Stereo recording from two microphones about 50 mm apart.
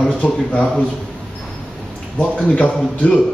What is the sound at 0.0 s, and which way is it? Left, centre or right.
Speech, centre.